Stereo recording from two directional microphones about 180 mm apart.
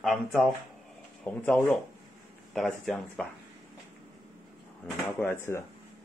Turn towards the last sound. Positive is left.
turn(degrees=15)  # may be behind; listen again after turning